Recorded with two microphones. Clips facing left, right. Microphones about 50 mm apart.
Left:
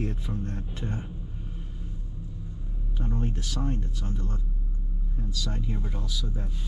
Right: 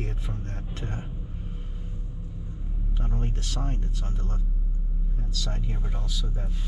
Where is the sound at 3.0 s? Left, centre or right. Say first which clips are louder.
Left 3 dB; right.